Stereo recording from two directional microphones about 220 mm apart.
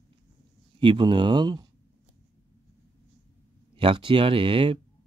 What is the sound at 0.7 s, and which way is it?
Speech, 20° right (ahead or behind).